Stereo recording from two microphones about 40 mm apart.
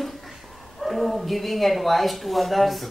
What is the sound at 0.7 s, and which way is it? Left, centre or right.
Speech, centre.